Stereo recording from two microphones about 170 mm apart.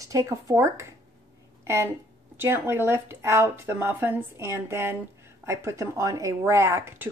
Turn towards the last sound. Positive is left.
turn(degrees=-15)  # may be behind; listen again after turning